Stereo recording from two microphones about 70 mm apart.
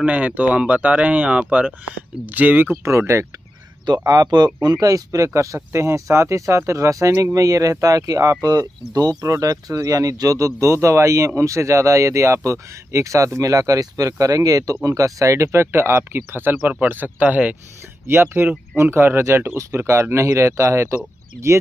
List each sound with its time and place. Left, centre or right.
0.0 s speech: centre; by 3.3 s right
4.0 s speech: right
9.2 s speech: right
18.0 s speech: right